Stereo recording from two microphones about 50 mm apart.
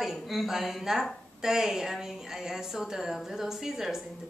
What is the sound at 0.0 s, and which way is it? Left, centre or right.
A woman's voice, centre.